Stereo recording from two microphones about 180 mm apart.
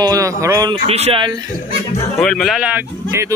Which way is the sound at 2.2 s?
Centre (ahead or behind).